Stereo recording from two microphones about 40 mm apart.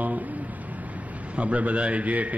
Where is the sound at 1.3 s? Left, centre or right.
Right.